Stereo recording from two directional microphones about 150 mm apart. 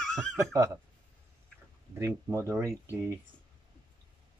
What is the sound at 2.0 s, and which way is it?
Speech, 20° right (ahead or behind).